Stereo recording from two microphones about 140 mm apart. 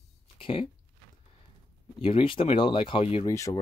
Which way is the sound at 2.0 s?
40° left (ahead or behind).